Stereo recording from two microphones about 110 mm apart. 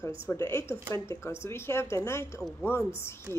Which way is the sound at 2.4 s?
5° left (ahead or behind).